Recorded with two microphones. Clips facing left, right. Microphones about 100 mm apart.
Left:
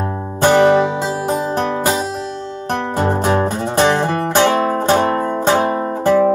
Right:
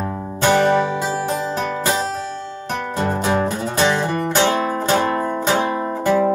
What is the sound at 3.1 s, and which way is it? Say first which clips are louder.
Music: left 2 dB; 45° left (ahead or behind).